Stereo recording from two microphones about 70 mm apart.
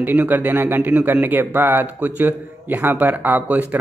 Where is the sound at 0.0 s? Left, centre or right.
Right.